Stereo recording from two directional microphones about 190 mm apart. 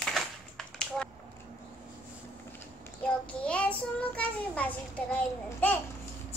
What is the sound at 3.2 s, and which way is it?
Child singing, 5° left (ahead or behind).